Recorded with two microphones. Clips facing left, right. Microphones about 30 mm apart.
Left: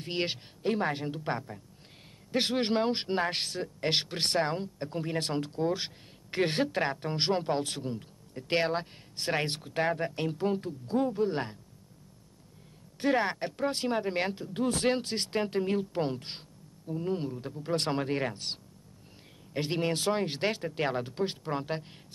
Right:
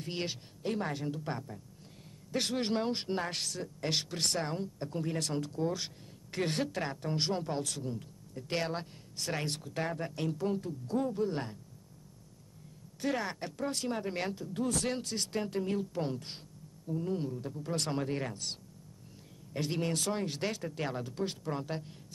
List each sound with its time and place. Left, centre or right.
0.0 s speech: left
13.0 s speech: left